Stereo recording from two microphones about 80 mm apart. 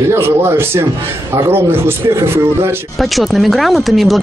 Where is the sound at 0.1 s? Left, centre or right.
Right.